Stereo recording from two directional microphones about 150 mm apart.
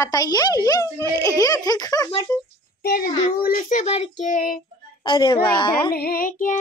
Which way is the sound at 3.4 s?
70° left (ahead or behind).